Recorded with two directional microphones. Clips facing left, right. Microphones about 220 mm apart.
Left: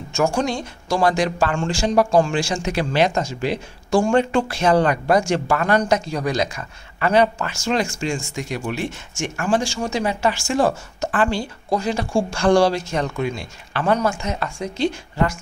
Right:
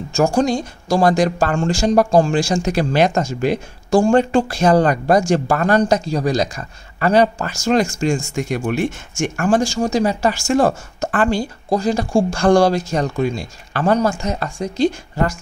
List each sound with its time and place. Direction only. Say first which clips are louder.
0.1 s speech: right 4 dB; 35° right (ahead or behind)
4.0 s speech: right 4 dB; 35° right (ahead or behind)